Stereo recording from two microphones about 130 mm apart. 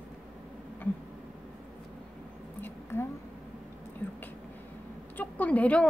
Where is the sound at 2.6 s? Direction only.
20° left (ahead or behind).